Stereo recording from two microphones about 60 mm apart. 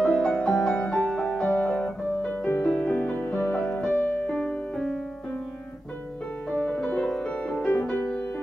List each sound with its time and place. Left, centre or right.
0.0 s music: centre; by 3.8 s left
3.8 s music: centre
6.5 s music: left
7.0 s music: centre